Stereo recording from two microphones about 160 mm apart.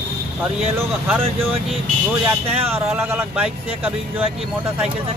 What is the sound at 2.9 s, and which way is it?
Speech, 15° right (ahead or behind).